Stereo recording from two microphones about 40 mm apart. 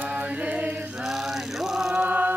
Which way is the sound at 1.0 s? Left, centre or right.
Centre.